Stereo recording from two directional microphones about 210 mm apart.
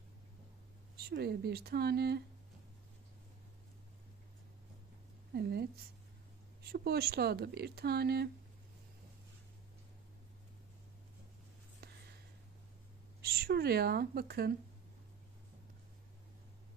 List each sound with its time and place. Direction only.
1.0 s speech: 50° right (ahead or behind)
5.3 s speech: 50° right (ahead or behind)
13.2 s speech: 50° right (ahead or behind)